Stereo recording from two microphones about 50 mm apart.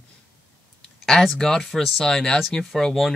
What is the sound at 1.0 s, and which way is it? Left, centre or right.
Speech, centre.